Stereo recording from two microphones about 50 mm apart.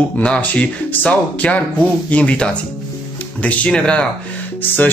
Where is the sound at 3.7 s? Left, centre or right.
Centre.